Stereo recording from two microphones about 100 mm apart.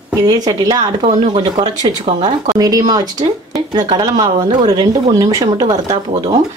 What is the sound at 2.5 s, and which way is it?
Speech, 40° right (ahead or behind).